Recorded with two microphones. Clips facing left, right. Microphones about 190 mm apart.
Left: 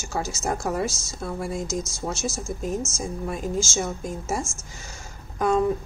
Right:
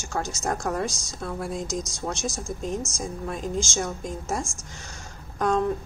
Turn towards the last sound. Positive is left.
turn(degrees=5)  # may be behind; listen again after turning